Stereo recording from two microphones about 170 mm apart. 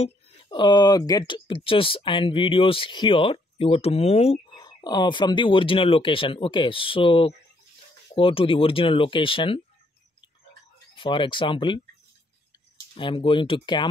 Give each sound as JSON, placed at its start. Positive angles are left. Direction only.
{"t": 0.0, "sound": "speech", "side_deg": 30}
{"t": 4.6, "sound": "speech", "side_deg": 25}
{"t": 11.0, "sound": "speech", "side_deg": 30}
{"t": 12.9, "sound": "speech", "side_deg": 30}